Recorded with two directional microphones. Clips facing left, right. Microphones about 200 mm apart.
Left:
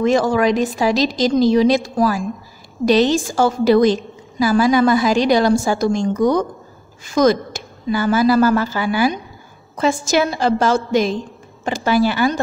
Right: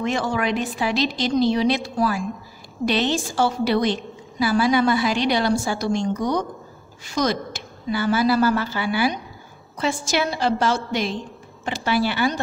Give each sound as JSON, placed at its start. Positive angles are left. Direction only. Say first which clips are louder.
{"t": 0.3, "sound": "a woman's voice", "louder": "left 7 dB", "side_deg": 40}